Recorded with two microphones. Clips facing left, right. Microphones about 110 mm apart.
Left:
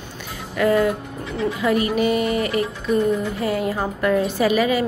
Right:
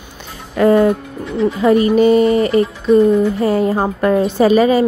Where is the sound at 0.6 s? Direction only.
30° right (ahead or behind).